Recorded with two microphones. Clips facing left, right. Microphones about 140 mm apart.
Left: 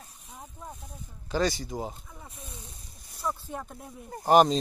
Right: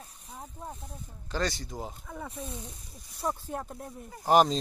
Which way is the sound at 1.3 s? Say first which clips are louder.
Left 5 dB; 5° left (ahead or behind).